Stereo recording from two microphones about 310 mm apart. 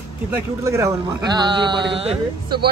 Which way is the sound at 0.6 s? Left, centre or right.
Centre.